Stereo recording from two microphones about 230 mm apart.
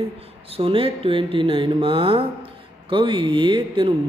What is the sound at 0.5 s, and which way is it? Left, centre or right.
Speech, right.